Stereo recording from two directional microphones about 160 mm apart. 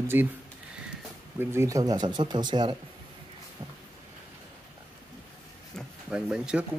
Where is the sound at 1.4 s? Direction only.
15° right (ahead or behind).